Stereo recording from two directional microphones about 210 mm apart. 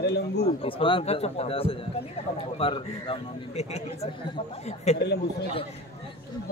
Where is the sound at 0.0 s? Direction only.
55° left (ahead or behind).